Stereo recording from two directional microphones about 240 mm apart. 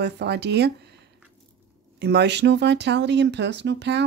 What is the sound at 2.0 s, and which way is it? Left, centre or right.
Speech, right.